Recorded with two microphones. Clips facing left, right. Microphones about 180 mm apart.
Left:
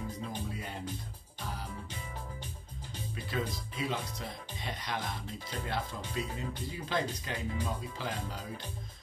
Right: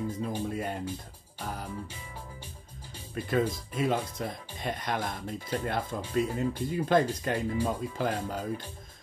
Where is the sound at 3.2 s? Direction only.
50° right (ahead or behind).